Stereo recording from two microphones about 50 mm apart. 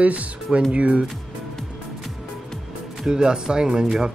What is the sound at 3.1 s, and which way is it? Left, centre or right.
Speech, centre.